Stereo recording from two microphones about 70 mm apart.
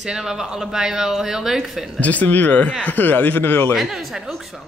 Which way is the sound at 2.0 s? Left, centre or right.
Left.